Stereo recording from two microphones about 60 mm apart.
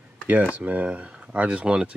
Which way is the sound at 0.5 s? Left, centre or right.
Right.